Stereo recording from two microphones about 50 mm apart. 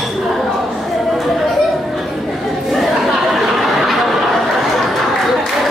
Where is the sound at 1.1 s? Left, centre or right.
Centre.